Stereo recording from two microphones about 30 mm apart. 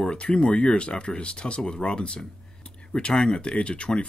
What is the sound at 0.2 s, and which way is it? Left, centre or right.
Speech, left.